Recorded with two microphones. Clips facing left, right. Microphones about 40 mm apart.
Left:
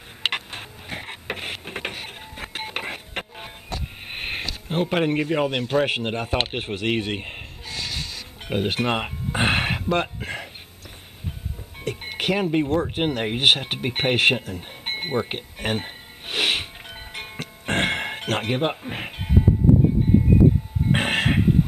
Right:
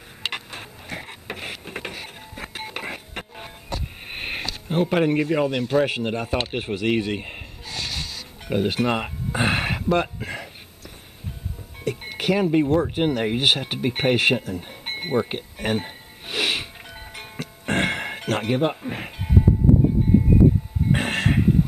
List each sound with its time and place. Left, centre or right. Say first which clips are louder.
0.2 s a sound: left 4 dB; left
0.6 s a sound: even; centre
1.0 s printer: left 2 dB; left
3.3 s music: right 1 dB; centre
4.6 s a man's voice: right 2 dB; centre
7.7 s music: even; centre
8.1 s music: right 1 dB; left
9.9 s a sound: right 1 dB; left
11.8 s music: right 1 dB; left
12.9 s speech: right 2 dB; left
14.4 s a sound: right 1 dB; centre
15.2 s music: right 1 dB; left
20.9 s music: left 1 dB; left